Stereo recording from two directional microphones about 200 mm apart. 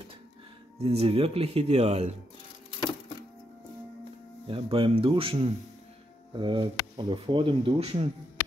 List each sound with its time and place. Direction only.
0.7 s speech: 30° right (ahead or behind)
4.5 s speech: 25° right (ahead or behind)